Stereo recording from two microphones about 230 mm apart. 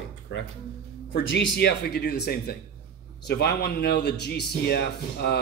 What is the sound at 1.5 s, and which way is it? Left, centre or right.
Speech, left.